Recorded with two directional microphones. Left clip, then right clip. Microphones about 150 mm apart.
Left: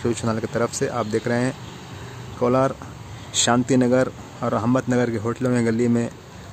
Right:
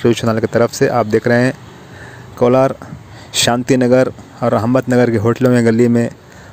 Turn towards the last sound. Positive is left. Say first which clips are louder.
# right 9 dB
turn(degrees=-35)  # may be behind; listen again after turning